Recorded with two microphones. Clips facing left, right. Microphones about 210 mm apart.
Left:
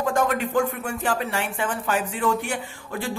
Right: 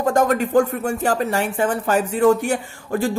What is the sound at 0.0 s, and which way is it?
Speech, 40° right (ahead or behind).